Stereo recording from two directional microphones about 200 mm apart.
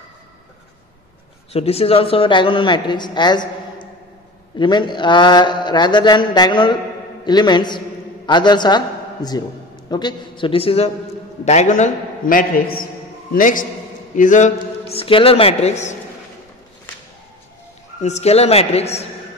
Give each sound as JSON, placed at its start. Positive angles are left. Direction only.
{"t": 1.5, "sound": "a man's voice", "side_deg": 30}
{"t": 18.0, "sound": "a man's voice", "side_deg": 35}